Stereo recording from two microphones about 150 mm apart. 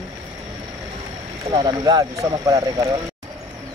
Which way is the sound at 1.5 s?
30° right (ahead or behind).